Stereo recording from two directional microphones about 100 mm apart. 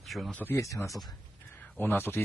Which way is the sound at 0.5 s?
30° left (ahead or behind).